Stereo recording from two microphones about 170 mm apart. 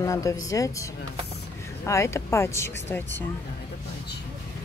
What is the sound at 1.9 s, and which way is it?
Speech, 15° left (ahead or behind).